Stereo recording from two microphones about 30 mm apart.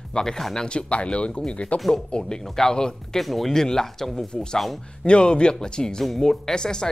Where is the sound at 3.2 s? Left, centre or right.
Centre.